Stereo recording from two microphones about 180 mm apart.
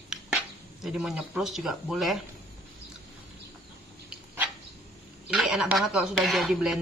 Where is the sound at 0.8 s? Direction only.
5° right (ahead or behind).